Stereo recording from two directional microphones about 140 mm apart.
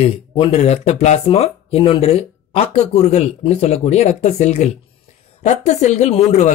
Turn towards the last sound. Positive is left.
turn(degrees=55)  # may be behind; listen again after turning